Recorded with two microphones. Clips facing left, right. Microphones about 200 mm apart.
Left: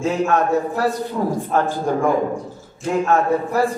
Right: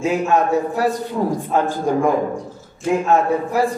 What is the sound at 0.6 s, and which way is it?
A man's voice, 15° right (ahead or behind).